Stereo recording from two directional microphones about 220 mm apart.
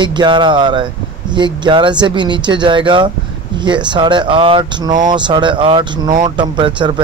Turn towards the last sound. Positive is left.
turn(degrees=-20)  # may be behind; listen again after turning